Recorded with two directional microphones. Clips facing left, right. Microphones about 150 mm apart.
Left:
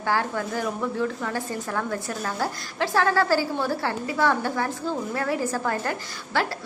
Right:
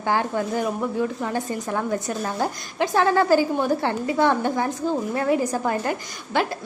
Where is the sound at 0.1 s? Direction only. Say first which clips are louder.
Right 3 dB; 20° right (ahead or behind).